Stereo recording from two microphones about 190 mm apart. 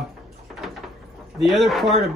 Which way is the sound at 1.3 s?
Centre (ahead or behind).